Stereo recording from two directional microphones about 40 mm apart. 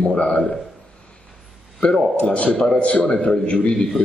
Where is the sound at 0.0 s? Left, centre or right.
Left.